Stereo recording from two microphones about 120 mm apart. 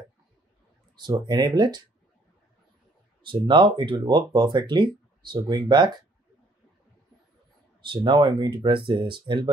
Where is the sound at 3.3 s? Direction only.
40° right (ahead or behind).